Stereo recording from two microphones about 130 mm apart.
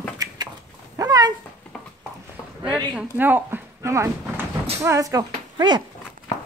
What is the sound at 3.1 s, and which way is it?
Speech, 15° right (ahead or behind).